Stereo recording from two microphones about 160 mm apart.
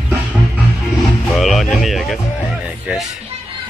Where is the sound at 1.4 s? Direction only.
Centre (ahead or behind).